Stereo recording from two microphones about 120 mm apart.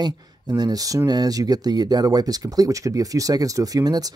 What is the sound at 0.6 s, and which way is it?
Speech, 30° right (ahead or behind).